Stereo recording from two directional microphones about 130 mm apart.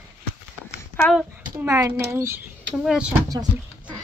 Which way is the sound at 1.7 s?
20° right (ahead or behind).